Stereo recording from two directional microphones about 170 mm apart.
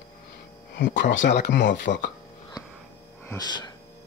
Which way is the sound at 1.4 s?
65° left (ahead or behind).